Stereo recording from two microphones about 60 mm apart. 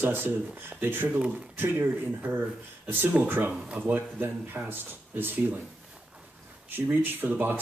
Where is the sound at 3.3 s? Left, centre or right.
Right.